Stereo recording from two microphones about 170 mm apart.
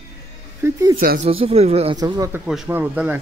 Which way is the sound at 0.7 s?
20° right (ahead or behind).